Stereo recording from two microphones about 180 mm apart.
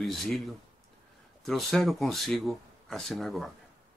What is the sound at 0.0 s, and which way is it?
Speech, centre (ahead or behind).